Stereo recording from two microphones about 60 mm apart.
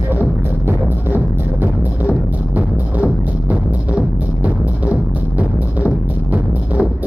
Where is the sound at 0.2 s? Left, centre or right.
Right.